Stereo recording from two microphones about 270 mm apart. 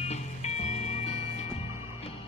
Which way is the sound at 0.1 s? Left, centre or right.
Left.